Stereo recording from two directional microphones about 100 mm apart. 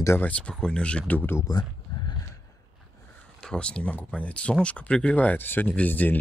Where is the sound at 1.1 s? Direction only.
20° left (ahead or behind).